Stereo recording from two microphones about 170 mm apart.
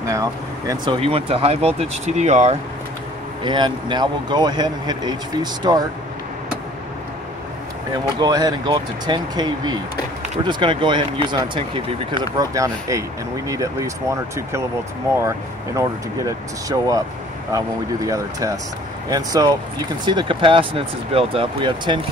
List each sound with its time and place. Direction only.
0.0 s speech: 20° right (ahead or behind)
0.9 s speech: 35° right (ahead or behind)
3.4 s speech: 25° right (ahead or behind)
8.2 s speech: 25° right (ahead or behind)